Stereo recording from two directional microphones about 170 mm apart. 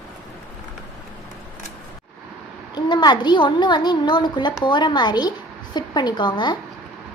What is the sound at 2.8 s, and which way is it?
A child's voice, 25° left (ahead or behind).